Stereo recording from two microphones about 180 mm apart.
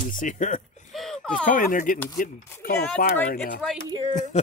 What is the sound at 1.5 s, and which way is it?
Speech, 50° left (ahead or behind).